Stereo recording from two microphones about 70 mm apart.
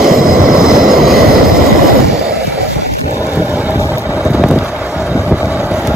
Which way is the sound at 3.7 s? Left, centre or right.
Left.